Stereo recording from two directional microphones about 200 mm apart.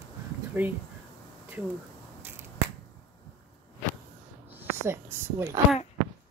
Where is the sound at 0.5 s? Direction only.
10° right (ahead or behind).